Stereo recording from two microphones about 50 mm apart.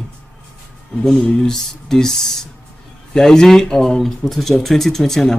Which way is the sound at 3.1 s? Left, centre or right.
Centre.